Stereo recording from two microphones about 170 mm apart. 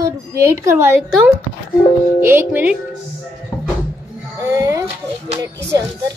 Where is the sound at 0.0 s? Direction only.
15° right (ahead or behind).